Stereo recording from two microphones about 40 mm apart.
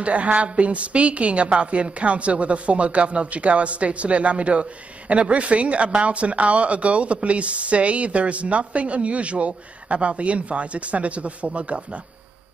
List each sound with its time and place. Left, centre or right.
0.0 s a woman's voice: right